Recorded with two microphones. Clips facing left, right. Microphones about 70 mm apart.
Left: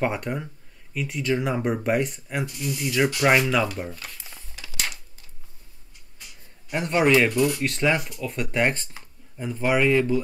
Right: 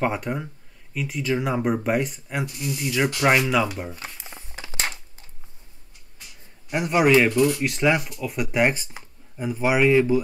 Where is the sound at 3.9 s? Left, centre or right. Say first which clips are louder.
Right 2 dB; centre.